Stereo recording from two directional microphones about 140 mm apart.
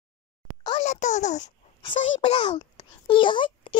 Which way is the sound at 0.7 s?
60° left (ahead or behind).